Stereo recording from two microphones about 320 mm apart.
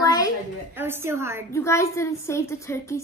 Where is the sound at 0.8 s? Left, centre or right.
Centre.